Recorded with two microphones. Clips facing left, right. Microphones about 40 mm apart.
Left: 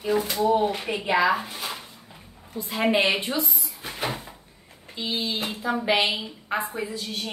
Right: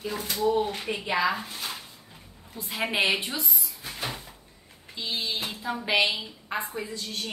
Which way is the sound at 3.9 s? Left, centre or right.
Centre.